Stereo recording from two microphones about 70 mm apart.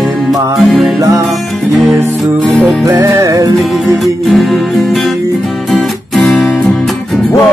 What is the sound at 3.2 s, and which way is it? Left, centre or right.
Music, right.